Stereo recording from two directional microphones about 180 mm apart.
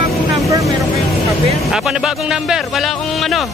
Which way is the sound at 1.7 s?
5° right (ahead or behind).